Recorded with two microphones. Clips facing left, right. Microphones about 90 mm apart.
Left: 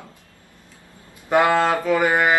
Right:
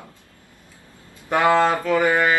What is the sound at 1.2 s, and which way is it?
Mantra, 15° left (ahead or behind).